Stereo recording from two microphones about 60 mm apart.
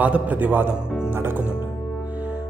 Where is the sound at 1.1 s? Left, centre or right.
Right.